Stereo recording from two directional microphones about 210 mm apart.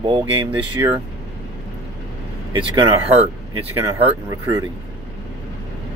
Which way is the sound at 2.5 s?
25° right (ahead or behind).